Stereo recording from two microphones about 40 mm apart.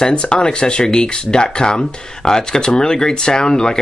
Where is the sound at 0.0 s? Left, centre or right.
Left.